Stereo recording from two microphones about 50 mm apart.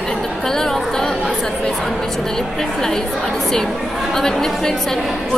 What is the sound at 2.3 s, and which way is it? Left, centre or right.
Speech, centre.